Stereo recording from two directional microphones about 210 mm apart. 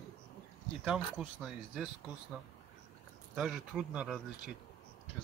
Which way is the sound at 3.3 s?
5° right (ahead or behind).